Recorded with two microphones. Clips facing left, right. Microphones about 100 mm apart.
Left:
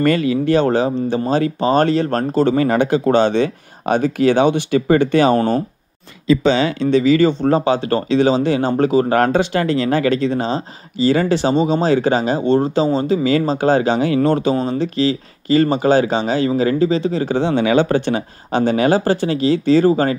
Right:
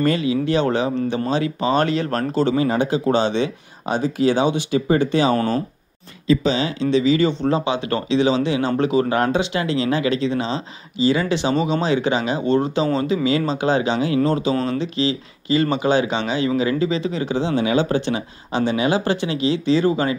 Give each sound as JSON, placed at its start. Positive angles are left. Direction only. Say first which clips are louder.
{"t": 0.0, "sound": "speech", "louder": "left 3 dB", "side_deg": 55}
{"t": 6.4, "sound": "speech", "louder": "left 5 dB", "side_deg": 70}
{"t": 14.2, "sound": "speech", "louder": "left 4 dB", "side_deg": 60}
{"t": 14.7, "sound": "speech", "louder": "left 4 dB", "side_deg": 45}
{"t": 17.4, "sound": "speech", "louder": "left 4 dB", "side_deg": 60}